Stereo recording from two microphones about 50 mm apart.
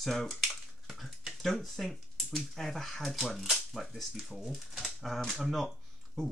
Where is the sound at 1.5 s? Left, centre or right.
Centre.